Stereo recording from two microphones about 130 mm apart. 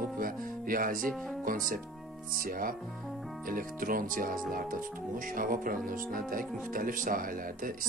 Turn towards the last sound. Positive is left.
turn(degrees=-90)